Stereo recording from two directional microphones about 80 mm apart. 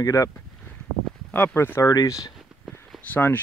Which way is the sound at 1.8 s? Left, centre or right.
Left.